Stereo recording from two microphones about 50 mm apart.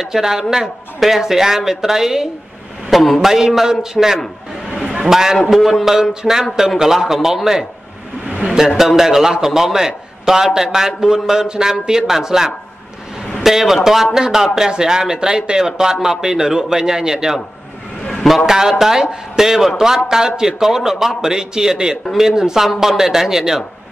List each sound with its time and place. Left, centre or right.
0.0 s a man's voice: centre
4.6 s a sound: centre
5.0 s a man's voice: centre
6.2 s speech: centre
6.8 s a man's voice: centre